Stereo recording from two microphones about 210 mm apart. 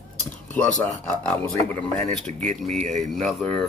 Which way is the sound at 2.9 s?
Centre (ahead or behind).